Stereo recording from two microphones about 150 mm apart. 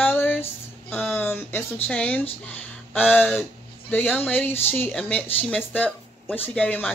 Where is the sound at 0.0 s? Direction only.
15° left (ahead or behind).